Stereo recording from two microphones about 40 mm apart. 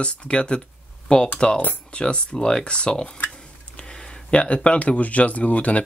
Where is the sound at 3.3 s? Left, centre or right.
Left.